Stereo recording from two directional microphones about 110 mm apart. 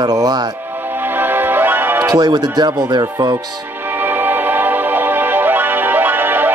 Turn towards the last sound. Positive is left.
turn(degrees=-15)  # may be behind; listen again after turning